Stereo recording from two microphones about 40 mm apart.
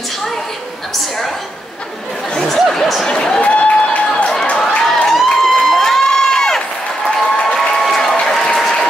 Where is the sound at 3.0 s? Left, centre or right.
Centre.